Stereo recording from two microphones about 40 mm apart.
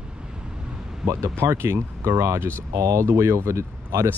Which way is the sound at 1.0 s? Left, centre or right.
Centre.